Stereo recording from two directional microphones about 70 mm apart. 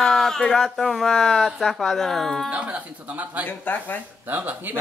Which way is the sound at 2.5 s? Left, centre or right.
Centre.